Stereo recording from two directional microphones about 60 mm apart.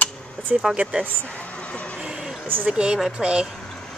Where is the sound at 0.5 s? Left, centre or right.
Centre.